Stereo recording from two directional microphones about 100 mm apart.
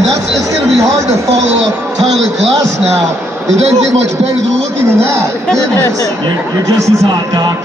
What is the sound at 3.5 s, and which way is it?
Speech, 90° right.